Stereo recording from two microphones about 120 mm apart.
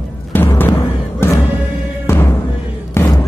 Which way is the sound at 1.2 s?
20° left (ahead or behind).